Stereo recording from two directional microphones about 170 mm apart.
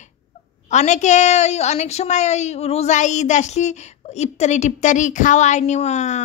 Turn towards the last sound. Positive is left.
turn(degrees=45)  # may be behind; listen again after turning